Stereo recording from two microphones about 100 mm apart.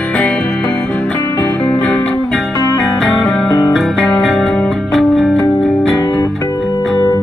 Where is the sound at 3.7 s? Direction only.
Centre (ahead or behind).